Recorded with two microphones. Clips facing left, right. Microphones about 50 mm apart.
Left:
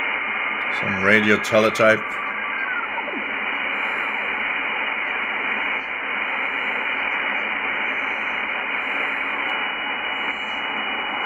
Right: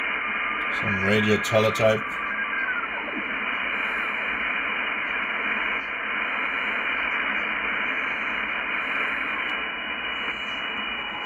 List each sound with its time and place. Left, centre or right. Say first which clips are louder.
1.0 s speech: left 6 dB; left